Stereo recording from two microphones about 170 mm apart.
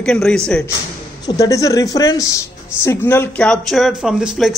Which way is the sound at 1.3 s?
20° left (ahead or behind).